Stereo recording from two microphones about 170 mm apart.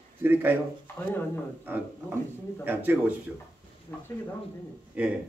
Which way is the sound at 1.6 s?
10° right (ahead or behind).